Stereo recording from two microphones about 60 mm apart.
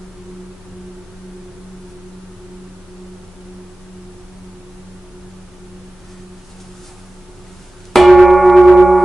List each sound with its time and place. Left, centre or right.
7.9 s church bell: centre